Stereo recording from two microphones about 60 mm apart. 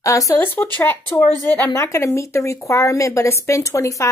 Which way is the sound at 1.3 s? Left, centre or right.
Right.